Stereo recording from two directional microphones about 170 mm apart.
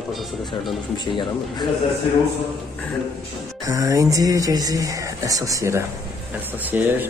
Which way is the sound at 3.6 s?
20° right (ahead or behind).